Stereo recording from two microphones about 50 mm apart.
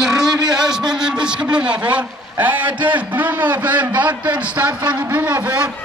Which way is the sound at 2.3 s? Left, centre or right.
Right.